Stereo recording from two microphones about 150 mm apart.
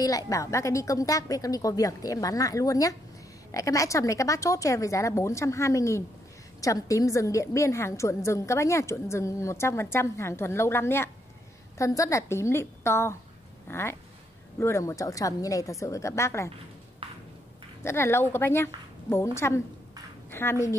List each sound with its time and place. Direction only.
0.0 s a woman's voice: 20° left (ahead or behind)
17.0 s a sound: 35° right (ahead or behind)
17.8 s a woman's voice: 15° left (ahead or behind)